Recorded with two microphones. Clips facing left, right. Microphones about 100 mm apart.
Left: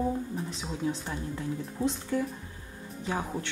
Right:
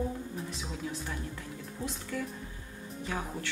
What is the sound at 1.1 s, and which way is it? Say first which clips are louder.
Speech: left 6 dB; 25° left (ahead or behind).